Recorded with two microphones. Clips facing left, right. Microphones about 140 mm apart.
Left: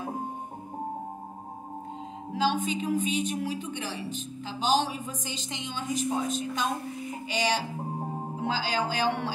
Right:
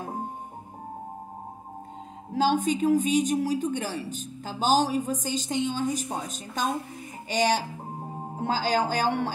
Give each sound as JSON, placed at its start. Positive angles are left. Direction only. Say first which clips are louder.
{"t": 2.3, "sound": "a woman's voice", "louder": "right 4 dB", "side_deg": -45}